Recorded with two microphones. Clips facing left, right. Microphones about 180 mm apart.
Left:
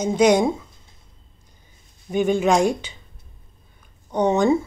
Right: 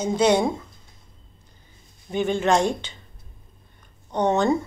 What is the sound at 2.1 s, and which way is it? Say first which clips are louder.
Speech: left 3 dB; 10° left (ahead or behind).